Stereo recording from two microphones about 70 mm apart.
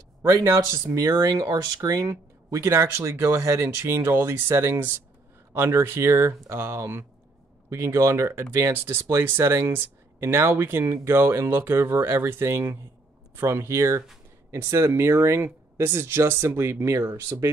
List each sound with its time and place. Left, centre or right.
0.2 s speech: right
2.0 s speech: right
8.7 s speech: right